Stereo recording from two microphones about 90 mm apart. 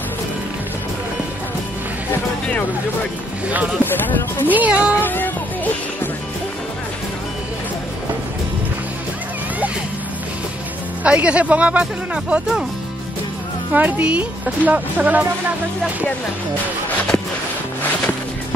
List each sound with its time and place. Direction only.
3.8 s speech: 20° left (ahead or behind)
4.5 s speech: 15° right (ahead or behind)
5.0 s speech: 20° left (ahead or behind)
11.1 s speech: 15° right (ahead or behind)
13.7 s speech: 15° right (ahead or behind)